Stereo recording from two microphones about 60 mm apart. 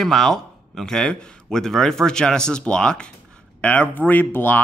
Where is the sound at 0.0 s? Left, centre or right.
Centre.